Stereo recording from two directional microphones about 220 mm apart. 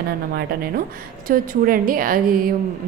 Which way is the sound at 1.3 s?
40° right (ahead or behind).